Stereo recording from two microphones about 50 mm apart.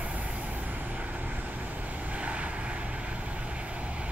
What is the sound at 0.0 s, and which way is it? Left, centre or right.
Vehicle, right.